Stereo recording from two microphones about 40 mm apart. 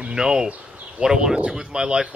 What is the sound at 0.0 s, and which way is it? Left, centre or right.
Speech, centre.